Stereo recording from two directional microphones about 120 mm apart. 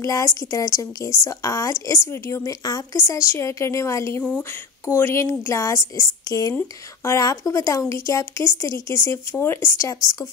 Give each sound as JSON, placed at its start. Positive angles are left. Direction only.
{"t": 0.0, "sound": "a woman's voice", "side_deg": 25}